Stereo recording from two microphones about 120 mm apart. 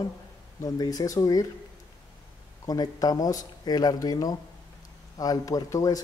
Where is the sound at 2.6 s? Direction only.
30° left (ahead or behind).